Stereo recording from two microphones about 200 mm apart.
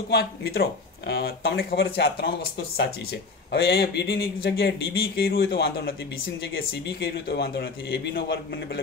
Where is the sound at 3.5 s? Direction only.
50° left (ahead or behind).